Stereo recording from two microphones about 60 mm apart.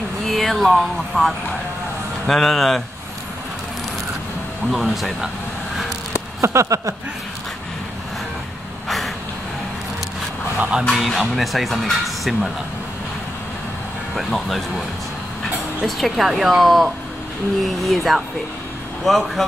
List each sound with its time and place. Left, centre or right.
0.3 s speech: centre
4.6 s speech: centre
6.4 s a sound: right
8.8 s vehicle: centre
10.9 s speech: centre
14.1 s speech: centre
15.8 s speech: centre